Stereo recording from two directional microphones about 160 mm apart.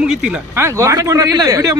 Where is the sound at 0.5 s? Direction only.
15° right (ahead or behind).